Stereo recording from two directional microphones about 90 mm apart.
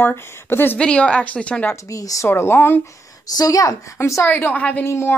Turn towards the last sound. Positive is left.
turn(degrees=30)  # may be behind; listen again after turning